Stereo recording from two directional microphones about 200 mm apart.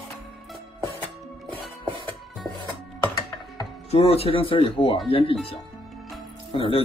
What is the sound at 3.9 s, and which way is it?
Speech, 30° left (ahead or behind).